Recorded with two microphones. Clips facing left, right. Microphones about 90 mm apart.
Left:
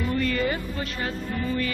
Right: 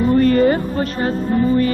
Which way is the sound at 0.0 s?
40° right (ahead or behind).